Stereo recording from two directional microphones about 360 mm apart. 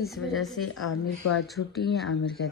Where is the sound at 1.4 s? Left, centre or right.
Centre.